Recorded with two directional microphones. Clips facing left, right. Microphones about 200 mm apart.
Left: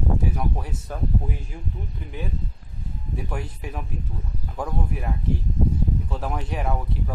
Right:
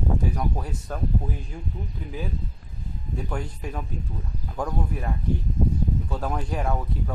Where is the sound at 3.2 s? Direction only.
5° left (ahead or behind).